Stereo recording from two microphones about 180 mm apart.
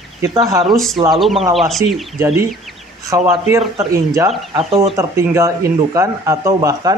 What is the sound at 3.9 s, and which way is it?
Speech, 15° right (ahead or behind).